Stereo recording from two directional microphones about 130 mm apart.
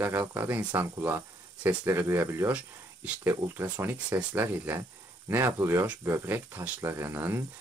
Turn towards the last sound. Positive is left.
turn(degrees=-20)  # may be behind; listen again after turning